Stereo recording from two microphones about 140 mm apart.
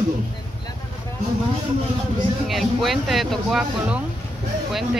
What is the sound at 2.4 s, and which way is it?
Speech, centre (ahead or behind).